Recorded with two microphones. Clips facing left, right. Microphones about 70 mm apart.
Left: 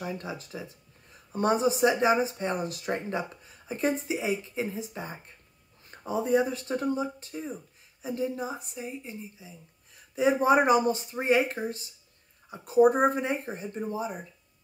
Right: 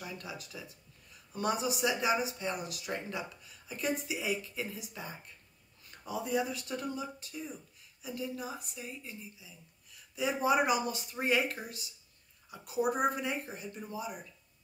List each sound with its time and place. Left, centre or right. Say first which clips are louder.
0.0 s speech: left 8 dB; left